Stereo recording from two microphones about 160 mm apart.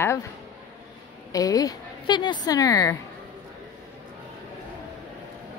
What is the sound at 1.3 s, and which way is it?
A woman's voice, 20° left (ahead or behind).